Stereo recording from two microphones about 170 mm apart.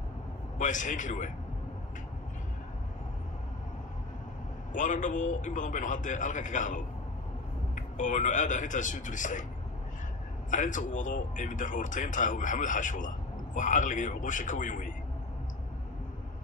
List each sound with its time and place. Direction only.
0.6 s speech: 50° left (ahead or behind)
4.7 s speech: 45° left (ahead or behind)
10.5 s speech: 45° left (ahead or behind)